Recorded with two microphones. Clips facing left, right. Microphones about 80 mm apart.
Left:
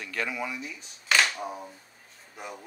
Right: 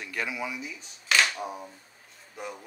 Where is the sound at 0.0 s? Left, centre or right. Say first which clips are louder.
Left 1 dB; centre.